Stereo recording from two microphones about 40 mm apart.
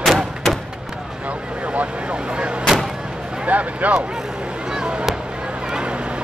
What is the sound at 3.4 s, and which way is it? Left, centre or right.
Speech, right.